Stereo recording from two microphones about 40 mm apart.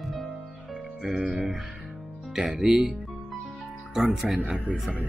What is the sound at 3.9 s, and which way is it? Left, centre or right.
Speech, centre.